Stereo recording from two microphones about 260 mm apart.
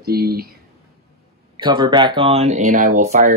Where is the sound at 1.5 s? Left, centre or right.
Centre.